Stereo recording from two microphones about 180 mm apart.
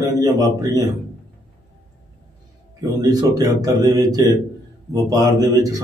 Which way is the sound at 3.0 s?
20° right (ahead or behind).